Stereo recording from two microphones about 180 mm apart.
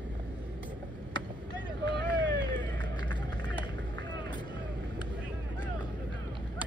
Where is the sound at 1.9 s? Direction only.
75° right (ahead or behind).